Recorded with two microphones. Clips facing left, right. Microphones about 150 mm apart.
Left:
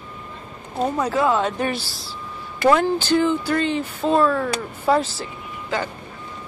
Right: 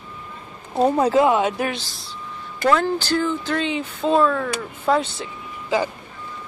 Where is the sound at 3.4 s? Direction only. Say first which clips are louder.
Left 2 dB; centre (ahead or behind).